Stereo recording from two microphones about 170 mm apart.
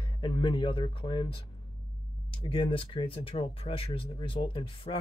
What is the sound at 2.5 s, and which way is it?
Speech, 30° left (ahead or behind).